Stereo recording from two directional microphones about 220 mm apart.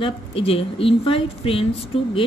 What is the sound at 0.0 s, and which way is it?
Speech, 25° left (ahead or behind).